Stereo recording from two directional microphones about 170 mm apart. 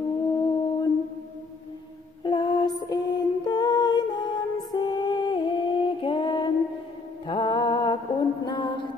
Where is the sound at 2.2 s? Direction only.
25° left (ahead or behind).